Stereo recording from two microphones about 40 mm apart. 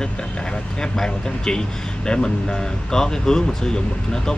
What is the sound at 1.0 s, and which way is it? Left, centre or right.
Speech, centre.